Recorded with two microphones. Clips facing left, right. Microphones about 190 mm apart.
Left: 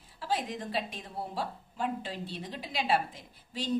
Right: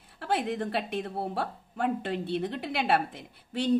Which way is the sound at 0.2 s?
60° right (ahead or behind).